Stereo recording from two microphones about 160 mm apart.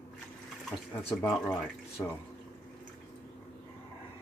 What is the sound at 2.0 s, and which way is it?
Speech, 15° left (ahead or behind).